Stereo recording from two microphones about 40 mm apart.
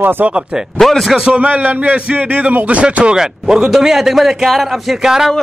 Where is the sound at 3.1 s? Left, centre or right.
Centre.